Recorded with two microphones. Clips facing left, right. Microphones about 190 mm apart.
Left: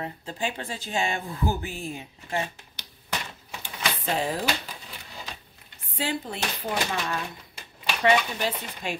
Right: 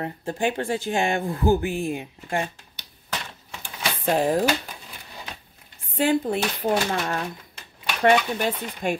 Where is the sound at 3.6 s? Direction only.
50° right (ahead or behind).